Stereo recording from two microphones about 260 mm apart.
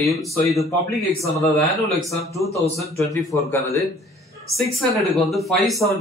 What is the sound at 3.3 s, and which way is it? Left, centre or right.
Speech, centre.